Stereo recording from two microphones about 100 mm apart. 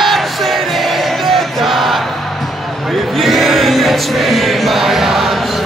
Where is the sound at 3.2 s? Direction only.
Centre (ahead or behind).